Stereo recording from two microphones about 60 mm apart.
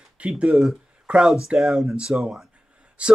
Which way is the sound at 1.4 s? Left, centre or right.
Centre.